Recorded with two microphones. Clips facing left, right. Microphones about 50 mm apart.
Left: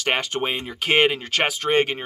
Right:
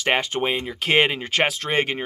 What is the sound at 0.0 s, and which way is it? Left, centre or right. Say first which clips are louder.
Speech: right 2 dB; centre.